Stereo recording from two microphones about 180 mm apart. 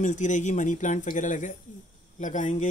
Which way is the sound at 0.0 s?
45° left (ahead or behind).